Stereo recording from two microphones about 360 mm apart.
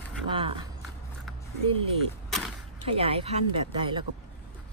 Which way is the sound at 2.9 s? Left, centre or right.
Centre.